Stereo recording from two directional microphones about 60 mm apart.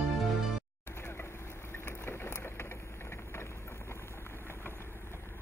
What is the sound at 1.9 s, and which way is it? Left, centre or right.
Boat, left.